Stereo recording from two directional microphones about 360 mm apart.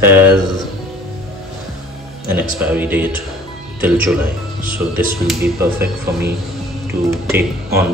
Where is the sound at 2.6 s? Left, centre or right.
Centre.